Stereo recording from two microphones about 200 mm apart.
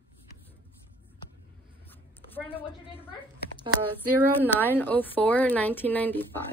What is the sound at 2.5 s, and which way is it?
Speech, 25° left (ahead or behind).